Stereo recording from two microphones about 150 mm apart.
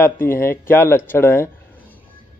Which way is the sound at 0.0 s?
15° left (ahead or behind).